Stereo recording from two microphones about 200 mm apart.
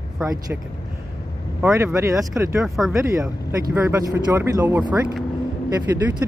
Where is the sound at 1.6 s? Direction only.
10° right (ahead or behind).